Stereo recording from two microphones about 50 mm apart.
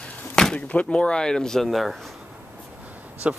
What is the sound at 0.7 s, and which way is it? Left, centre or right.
Speech, left.